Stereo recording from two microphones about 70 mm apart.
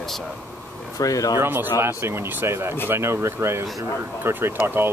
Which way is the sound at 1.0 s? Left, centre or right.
Left.